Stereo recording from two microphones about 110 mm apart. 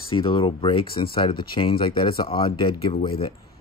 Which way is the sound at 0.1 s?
55° left (ahead or behind).